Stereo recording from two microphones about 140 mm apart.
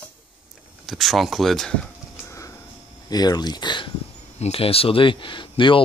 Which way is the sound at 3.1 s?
30° left (ahead or behind).